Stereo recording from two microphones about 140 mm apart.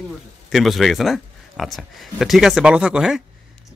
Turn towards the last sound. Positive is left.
turn(degrees=-5)  # may be behind; listen again after turning